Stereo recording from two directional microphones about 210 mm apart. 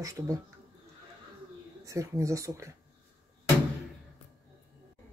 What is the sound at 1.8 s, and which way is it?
Speech, 15° right (ahead or behind).